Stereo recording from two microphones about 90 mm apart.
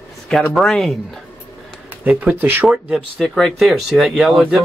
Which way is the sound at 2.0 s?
15° right (ahead or behind).